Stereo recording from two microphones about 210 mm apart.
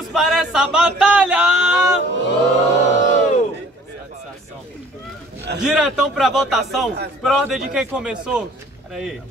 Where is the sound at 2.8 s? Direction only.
35° left (ahead or behind).